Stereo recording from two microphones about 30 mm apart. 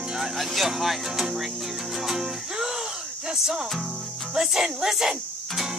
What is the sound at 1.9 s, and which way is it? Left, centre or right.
Music, centre.